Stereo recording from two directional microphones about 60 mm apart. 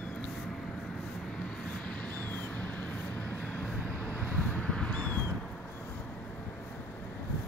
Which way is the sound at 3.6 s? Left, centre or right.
Left.